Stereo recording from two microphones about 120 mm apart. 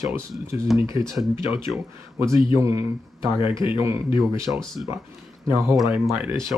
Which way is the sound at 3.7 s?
20° right (ahead or behind).